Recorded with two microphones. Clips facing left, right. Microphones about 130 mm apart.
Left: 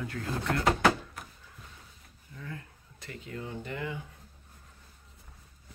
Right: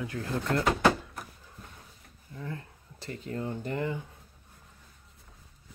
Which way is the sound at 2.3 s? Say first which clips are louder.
Right 4 dB; 30° right (ahead or behind).